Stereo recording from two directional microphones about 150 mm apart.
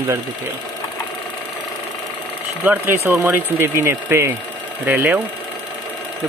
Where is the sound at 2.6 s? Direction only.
15° right (ahead or behind).